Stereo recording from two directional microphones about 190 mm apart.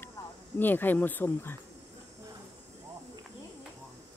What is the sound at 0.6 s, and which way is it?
Speech, 10° left (ahead or behind).